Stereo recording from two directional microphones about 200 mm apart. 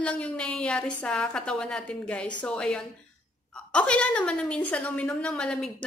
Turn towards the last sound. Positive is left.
turn(degrees=5)  # may be behind; listen again after turning